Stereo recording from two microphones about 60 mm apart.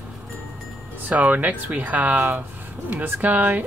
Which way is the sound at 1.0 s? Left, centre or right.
Right.